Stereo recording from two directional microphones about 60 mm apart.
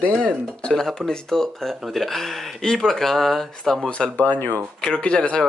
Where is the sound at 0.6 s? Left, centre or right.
Centre.